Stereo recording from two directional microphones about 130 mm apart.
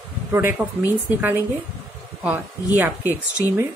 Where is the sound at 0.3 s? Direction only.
15° right (ahead or behind).